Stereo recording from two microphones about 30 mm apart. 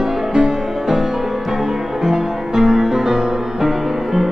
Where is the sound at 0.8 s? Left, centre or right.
Centre.